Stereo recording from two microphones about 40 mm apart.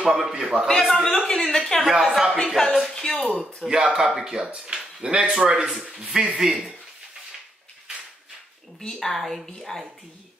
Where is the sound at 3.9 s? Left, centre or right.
Centre.